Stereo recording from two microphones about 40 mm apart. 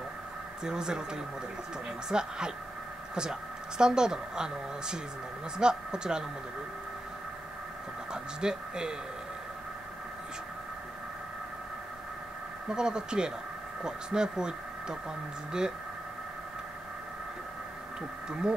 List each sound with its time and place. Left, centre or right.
0.7 s a woman's voice: centre
8.1 s speech: centre
12.6 s a woman's voice: centre